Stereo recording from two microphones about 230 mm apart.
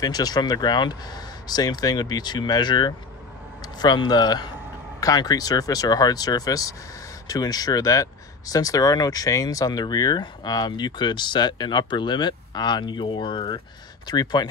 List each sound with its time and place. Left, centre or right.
0.0 s speech: centre